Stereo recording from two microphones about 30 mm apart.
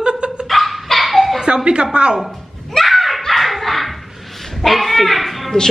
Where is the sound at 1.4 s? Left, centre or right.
Right.